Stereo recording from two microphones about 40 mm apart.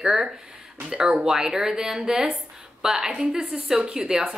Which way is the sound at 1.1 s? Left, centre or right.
Centre.